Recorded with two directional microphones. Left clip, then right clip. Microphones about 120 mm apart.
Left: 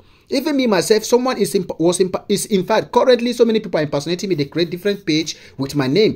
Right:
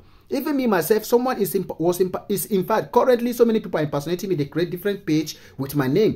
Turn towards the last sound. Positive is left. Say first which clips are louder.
# left 4 dB
turn(degrees=25)  # may be behind; listen again after turning